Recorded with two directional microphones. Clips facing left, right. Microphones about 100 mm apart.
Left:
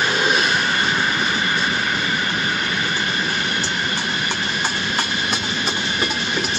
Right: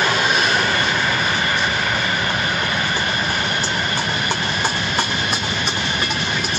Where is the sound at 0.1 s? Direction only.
25° left (ahead or behind).